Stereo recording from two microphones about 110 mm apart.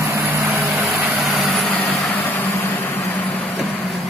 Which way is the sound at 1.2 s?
Centre (ahead or behind).